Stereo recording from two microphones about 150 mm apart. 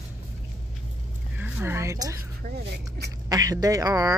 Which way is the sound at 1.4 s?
15° right (ahead or behind).